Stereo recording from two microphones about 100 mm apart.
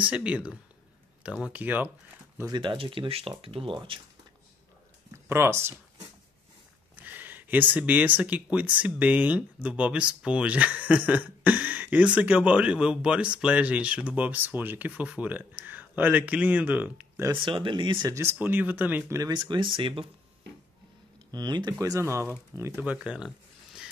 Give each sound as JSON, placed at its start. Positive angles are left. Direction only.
{"t": 0.0, "sound": "speech", "side_deg": -10}
{"t": 2.5, "sound": "speech", "side_deg": -55}
{"t": 5.1, "sound": "speech", "side_deg": -25}
{"t": 7.0, "sound": "speech", "side_deg": -20}
{"t": 17.4, "sound": "speech", "side_deg": -55}
{"t": 18.1, "sound": "speech", "side_deg": -20}
{"t": 19.1, "sound": "speech", "side_deg": -40}
{"t": 21.3, "sound": "speech", "side_deg": -45}
{"t": 21.7, "sound": "speech", "side_deg": -35}
{"t": 22.8, "sound": "speech", "side_deg": -15}